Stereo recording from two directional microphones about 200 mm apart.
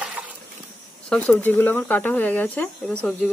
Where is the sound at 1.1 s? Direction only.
10° left (ahead or behind).